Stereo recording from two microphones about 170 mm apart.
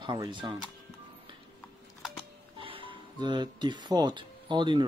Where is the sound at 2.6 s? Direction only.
30° right (ahead or behind).